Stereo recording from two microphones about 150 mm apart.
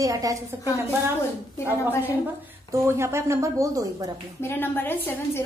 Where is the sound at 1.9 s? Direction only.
15° right (ahead or behind).